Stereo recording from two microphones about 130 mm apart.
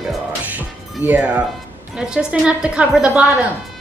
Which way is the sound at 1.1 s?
10° right (ahead or behind).